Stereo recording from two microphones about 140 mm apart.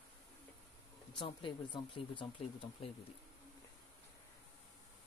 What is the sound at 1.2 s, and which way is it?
Speech, 35° left (ahead or behind).